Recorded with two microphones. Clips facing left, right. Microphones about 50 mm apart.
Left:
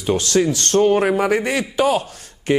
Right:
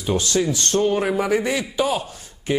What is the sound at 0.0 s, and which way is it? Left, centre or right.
A man's voice, left.